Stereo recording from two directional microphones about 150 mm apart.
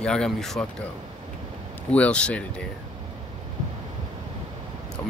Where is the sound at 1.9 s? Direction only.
10° left (ahead or behind).